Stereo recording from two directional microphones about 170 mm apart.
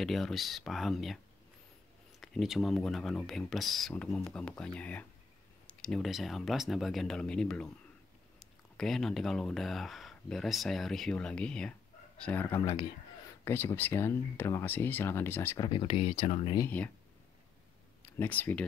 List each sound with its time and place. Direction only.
0.0 s speech: centre (ahead or behind); by 16.5 s 35° left (ahead or behind)
16.5 s speech: 10° left (ahead or behind)
18.0 s speech: 10° left (ahead or behind)